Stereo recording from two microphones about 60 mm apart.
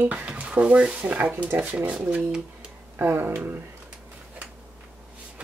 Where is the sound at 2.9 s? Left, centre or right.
Right.